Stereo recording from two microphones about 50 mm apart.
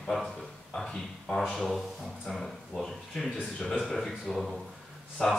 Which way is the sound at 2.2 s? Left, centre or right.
Centre.